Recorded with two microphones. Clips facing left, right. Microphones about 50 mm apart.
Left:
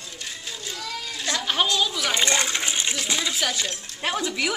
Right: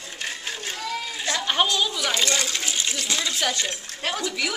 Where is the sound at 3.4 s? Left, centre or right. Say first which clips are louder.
Right 1 dB; centre.